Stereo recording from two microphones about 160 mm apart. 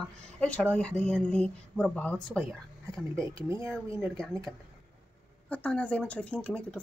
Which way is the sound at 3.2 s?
15° right (ahead or behind).